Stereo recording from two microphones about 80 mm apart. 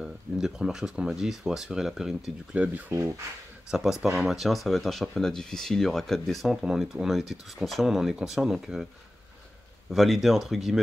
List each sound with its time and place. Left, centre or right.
0.0 s speech: centre
2.5 s speech: centre
3.7 s speech: centre
9.8 s speech: centre